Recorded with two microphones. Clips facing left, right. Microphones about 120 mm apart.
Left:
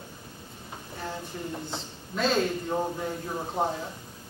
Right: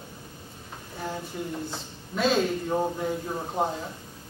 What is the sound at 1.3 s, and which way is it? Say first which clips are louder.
Speech: right 2 dB; 5° right (ahead or behind).